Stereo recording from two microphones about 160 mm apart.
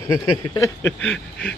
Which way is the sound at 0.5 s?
20° left (ahead or behind).